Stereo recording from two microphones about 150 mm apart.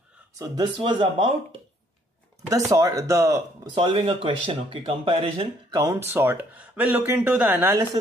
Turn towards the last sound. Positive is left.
turn(degrees=-15)  # may be behind; listen again after turning